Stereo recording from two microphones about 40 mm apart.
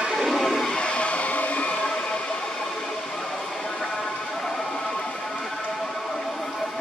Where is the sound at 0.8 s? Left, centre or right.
Left.